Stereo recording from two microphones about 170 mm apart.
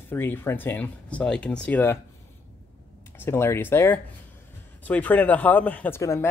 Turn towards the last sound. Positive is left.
turn(degrees=15)  # may be behind; listen again after turning